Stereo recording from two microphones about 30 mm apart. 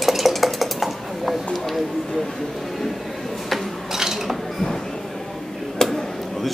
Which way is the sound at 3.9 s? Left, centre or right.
Centre.